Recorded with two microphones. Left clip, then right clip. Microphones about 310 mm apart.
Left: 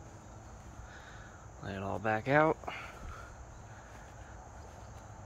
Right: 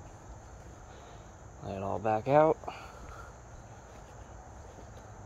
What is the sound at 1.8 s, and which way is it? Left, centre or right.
Speech, left.